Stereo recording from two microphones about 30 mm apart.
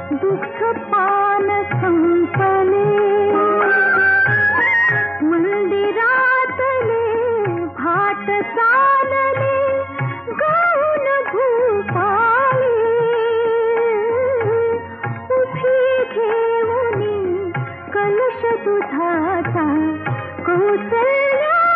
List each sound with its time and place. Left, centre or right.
0.1 s music of bollywood: left
3.4 s music: left
10.4 s music of bollywood: left